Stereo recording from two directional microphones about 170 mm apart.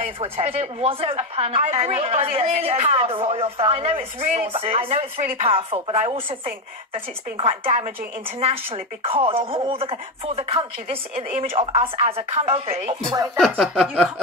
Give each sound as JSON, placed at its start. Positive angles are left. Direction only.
{"t": 0.2, "sound": "a woman's voice", "side_deg": -35}
{"t": 7.3, "sound": "a woman's voice", "side_deg": -35}
{"t": 13.4, "sound": "a sound", "side_deg": 0}